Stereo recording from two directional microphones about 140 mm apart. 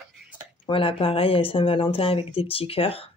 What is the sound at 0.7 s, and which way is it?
Speech, 40° left (ahead or behind).